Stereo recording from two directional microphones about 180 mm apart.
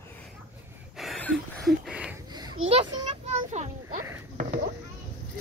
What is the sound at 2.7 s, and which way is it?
A child's voice, 30° right (ahead or behind).